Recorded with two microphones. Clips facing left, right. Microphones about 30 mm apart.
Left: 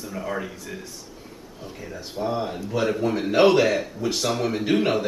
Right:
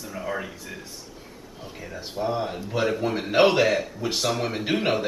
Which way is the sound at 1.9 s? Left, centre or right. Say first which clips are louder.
Even; centre.